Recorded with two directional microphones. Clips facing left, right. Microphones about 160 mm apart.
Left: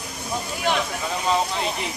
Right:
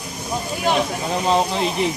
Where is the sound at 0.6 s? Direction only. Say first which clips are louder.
Right 4 dB; 35° right (ahead or behind).